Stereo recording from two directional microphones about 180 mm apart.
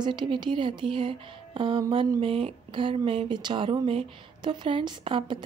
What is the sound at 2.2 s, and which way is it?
Speech, 30° right (ahead or behind).